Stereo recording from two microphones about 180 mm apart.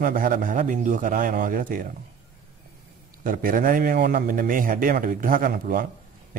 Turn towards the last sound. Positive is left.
turn(degrees=-55)  # may be behind; listen again after turning